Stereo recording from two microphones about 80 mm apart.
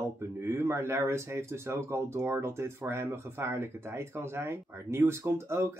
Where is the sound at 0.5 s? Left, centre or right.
Right.